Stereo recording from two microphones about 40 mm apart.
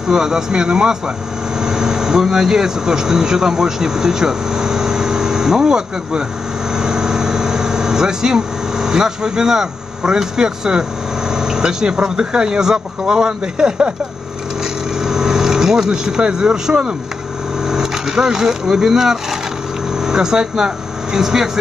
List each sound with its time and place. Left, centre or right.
0.1 s speech: centre
14.6 s vehicle: centre
15.9 s speech: centre